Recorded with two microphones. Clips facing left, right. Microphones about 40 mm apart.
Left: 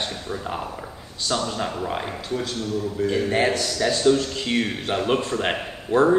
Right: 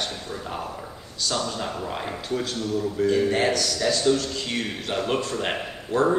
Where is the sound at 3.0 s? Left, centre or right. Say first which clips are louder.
Even; centre.